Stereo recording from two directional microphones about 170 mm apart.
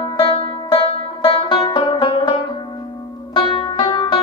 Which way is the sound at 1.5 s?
25° left (ahead or behind).